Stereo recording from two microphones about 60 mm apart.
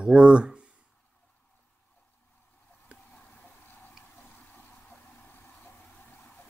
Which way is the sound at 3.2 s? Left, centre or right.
Left.